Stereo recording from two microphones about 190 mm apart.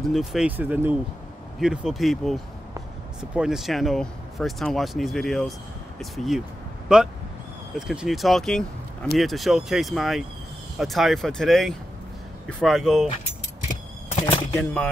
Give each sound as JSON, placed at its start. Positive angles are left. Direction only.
{"t": 0.0, "sound": "speech", "side_deg": 0}
{"t": 14.2, "sound": "speech", "side_deg": 10}